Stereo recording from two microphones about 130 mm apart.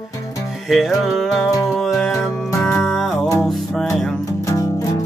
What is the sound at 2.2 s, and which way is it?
Music, 20° left (ahead or behind).